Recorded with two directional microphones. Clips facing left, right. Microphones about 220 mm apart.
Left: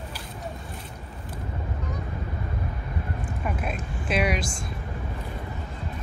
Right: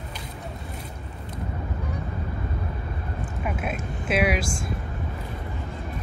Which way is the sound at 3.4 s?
5° right (ahead or behind).